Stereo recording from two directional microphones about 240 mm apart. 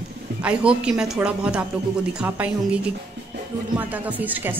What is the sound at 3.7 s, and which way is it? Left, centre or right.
Speech, centre.